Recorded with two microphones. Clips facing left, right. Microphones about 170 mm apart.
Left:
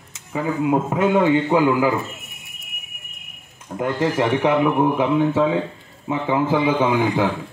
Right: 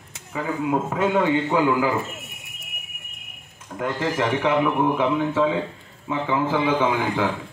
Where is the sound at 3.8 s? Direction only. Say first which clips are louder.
Left 4 dB; 25° left (ahead or behind).